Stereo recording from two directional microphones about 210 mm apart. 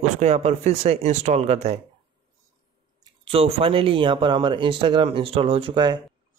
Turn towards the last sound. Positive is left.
turn(degrees=-25)  # may be behind; listen again after turning